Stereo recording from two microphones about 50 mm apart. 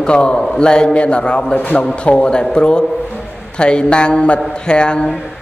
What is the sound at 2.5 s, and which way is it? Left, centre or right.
A man's voice, centre.